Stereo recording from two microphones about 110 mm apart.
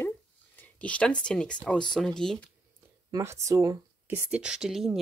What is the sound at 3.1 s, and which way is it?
Speech, 30° right (ahead or behind).